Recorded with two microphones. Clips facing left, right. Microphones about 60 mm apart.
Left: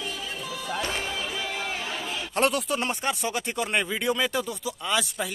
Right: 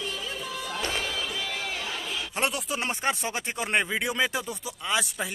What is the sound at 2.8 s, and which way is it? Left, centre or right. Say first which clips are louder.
Speech: left 1 dB; right.